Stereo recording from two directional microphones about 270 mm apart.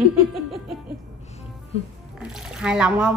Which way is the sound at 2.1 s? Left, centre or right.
Centre.